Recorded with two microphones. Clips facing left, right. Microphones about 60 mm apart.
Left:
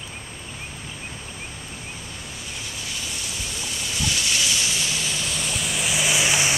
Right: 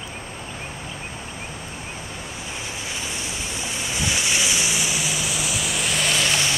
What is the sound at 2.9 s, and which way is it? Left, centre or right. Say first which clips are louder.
Waves: right 2 dB; right.